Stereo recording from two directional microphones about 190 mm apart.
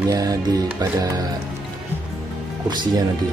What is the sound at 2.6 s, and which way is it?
Speech, 20° right (ahead or behind).